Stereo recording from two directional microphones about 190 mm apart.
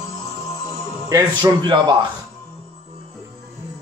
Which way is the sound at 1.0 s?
20° right (ahead or behind).